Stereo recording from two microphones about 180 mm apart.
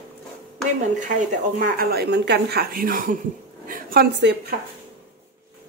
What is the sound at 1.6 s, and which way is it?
A woman's voice, 55° right (ahead or behind).